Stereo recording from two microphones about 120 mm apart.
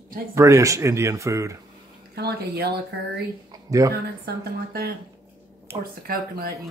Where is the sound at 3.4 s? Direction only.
30° right (ahead or behind).